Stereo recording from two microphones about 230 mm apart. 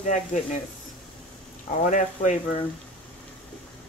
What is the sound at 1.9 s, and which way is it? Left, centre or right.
Speech, left.